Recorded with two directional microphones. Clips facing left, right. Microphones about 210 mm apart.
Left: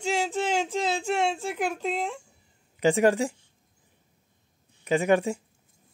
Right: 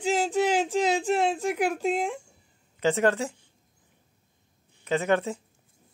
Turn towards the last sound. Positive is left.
turn(degrees=15)  # may be behind; listen again after turning